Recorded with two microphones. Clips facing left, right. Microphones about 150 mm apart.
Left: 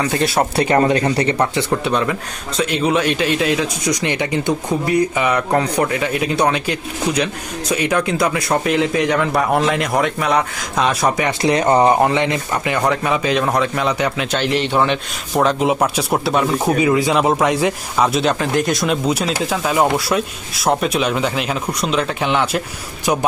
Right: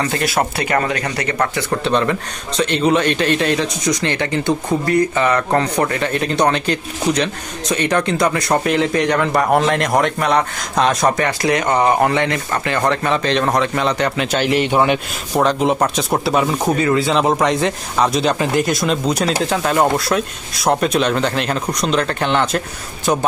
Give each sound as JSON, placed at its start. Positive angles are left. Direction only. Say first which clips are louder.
{"t": 0.2, "sound": "speech", "louder": "left 2 dB", "side_deg": 30}
{"t": 1.7, "sound": "speech", "louder": "right 1 dB", "side_deg": 5}
{"t": 11.2, "sound": "speech", "louder": "left 2 dB", "side_deg": 30}
{"t": 12.0, "sound": "speech", "louder": "even", "side_deg": 15}
{"t": 14.7, "sound": "a man's voice", "louder": "right 1 dB", "side_deg": -15}
{"t": 15.3, "sound": "speech", "louder": "even", "side_deg": 0}